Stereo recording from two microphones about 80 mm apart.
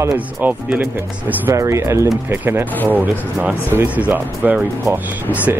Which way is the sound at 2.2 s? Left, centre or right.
Right.